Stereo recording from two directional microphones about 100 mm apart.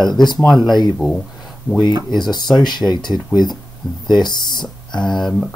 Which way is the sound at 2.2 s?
45° left (ahead or behind).